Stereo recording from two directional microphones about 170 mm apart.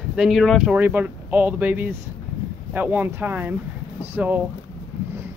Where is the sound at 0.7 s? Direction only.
10° right (ahead or behind).